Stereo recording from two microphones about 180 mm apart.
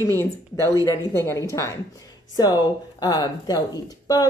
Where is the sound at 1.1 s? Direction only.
15° left (ahead or behind).